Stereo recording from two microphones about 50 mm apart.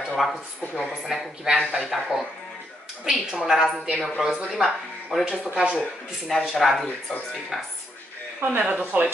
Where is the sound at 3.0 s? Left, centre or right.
Centre.